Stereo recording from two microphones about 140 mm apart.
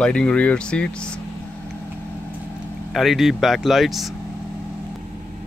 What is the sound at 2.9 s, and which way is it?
Speech, centre (ahead or behind).